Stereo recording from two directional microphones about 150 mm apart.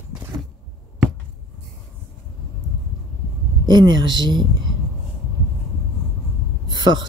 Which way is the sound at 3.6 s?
30° right (ahead or behind).